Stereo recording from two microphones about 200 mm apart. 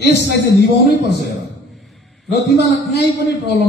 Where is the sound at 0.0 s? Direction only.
55° left (ahead or behind).